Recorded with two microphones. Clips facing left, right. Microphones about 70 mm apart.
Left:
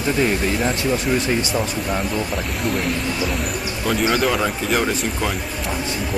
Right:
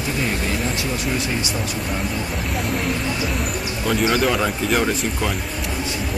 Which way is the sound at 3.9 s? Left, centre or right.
Centre.